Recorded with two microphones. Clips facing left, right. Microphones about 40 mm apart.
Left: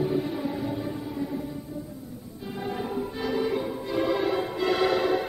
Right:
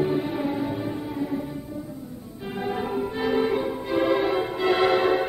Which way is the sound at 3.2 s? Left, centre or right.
Right.